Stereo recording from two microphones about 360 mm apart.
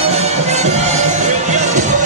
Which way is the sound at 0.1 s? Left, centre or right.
Centre.